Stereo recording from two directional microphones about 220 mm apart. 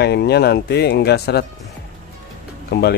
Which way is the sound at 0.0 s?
50° left (ahead or behind).